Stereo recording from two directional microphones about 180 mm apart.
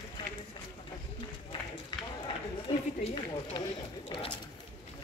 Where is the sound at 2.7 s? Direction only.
25° left (ahead or behind).